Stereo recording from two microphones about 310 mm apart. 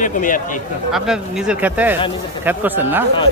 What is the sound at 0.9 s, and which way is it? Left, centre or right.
Speech, centre.